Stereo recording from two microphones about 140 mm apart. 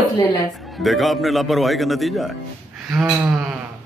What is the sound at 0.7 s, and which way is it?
A man's voice, centre (ahead or behind).